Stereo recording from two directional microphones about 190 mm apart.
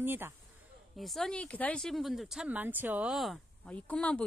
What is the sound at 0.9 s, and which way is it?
Speech, centre (ahead or behind).